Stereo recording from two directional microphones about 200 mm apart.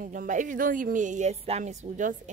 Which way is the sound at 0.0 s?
40° right (ahead or behind).